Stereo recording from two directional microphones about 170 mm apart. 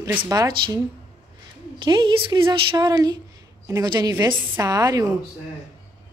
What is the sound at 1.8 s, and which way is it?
A woman's voice, 25° right (ahead or behind).